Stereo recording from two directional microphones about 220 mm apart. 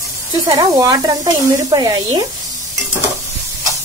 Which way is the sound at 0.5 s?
15° right (ahead or behind).